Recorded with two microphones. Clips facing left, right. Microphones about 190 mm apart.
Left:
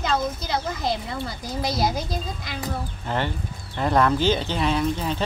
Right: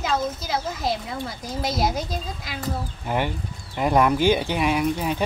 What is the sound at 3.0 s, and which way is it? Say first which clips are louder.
Speech: right 2 dB; 10° right (ahead or behind).